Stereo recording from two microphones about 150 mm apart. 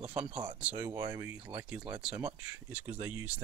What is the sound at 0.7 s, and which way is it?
Speech, 25° right (ahead or behind).